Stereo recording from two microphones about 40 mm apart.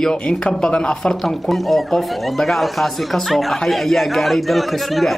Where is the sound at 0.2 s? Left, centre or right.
Left.